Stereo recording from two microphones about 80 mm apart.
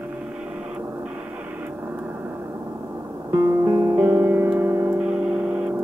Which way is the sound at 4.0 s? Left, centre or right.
Right.